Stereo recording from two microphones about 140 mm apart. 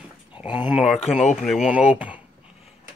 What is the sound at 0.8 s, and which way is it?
Speech, centre (ahead or behind).